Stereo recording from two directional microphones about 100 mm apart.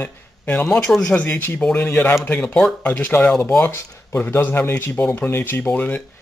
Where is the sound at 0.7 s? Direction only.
5° left (ahead or behind).